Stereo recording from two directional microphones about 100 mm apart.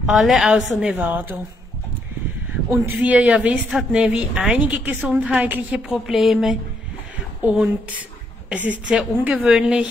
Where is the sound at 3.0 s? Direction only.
15° right (ahead or behind).